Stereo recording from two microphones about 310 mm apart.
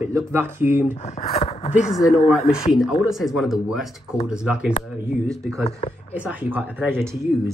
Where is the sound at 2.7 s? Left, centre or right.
Centre.